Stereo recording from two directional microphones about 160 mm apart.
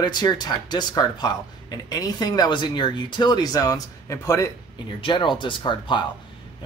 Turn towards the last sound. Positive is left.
turn(degrees=30)  # may be behind; listen again after turning